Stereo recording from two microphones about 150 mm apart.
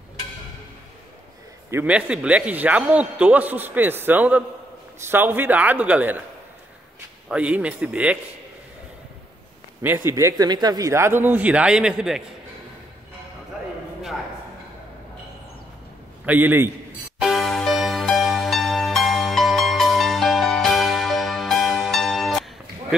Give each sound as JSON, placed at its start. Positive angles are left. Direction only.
{"t": 1.7, "sound": "a man's voice", "side_deg": -10}
{"t": 7.2, "sound": "a man's voice", "side_deg": -5}
{"t": 9.8, "sound": "a man's voice", "side_deg": -20}
{"t": 16.3, "sound": "a man's voice", "side_deg": -15}
{"t": 17.2, "sound": "music", "side_deg": 0}